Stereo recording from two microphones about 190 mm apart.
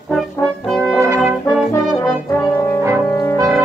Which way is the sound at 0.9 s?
15° right (ahead or behind).